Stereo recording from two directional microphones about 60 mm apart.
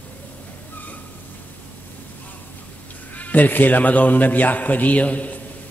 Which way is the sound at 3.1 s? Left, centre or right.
Left.